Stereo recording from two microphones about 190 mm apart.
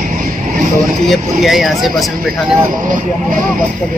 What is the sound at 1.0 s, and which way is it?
Speech, centre (ahead or behind).